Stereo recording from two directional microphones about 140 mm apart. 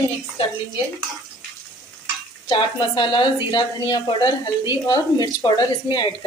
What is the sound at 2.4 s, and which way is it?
A woman's voice, 35° left (ahead or behind).